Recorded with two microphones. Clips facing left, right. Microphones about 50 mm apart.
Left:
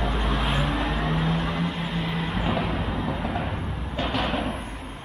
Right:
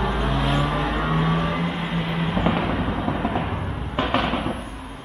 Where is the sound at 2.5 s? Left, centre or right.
Centre.